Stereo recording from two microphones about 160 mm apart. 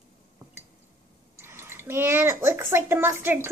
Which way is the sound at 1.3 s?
15° right (ahead or behind).